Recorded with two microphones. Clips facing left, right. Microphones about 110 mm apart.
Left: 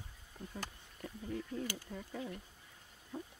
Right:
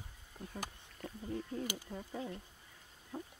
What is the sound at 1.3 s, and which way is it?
Speech, 30° right (ahead or behind).